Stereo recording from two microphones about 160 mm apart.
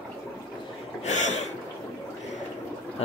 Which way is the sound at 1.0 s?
45° left (ahead or behind).